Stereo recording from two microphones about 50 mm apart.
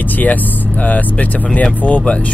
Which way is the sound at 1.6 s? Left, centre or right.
Left.